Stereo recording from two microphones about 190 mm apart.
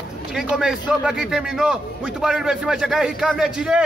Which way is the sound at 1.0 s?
5° right (ahead or behind).